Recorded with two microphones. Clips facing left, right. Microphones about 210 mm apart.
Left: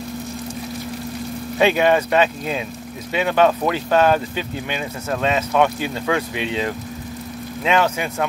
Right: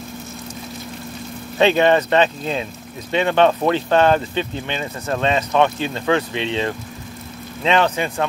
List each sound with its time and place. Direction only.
1.6 s speech: 10° left (ahead or behind)